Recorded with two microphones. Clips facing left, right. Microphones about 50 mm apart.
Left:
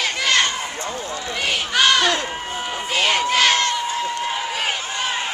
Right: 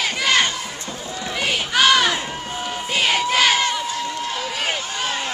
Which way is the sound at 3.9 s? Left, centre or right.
Centre.